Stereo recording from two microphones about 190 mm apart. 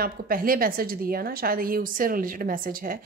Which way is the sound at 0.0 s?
50° right (ahead or behind).